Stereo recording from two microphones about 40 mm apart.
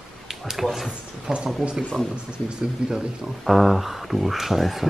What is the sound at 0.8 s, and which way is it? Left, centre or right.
Speech, centre.